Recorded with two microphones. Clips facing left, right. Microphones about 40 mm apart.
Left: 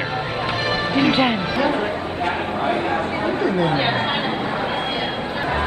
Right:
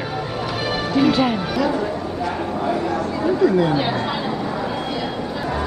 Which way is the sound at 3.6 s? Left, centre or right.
Left.